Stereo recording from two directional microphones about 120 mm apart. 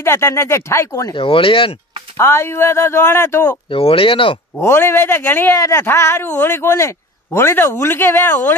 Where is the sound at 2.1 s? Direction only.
20° left (ahead or behind).